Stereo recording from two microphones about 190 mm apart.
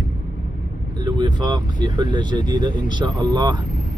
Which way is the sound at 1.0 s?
25° right (ahead or behind).